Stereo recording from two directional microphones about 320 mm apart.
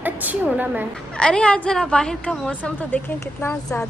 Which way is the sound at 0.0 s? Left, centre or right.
Centre.